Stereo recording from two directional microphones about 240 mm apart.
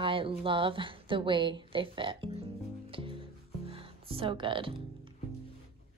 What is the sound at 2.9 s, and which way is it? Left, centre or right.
Music, right.